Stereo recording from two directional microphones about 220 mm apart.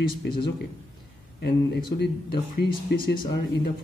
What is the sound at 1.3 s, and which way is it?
A man's voice, 50° left (ahead or behind).